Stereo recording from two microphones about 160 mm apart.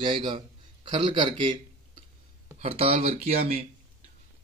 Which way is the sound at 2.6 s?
35° right (ahead or behind).